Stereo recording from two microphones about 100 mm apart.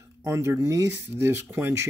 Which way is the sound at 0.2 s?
30° right (ahead or behind).